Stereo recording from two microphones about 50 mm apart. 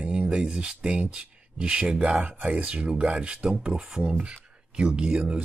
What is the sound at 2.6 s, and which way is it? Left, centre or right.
Speech, centre.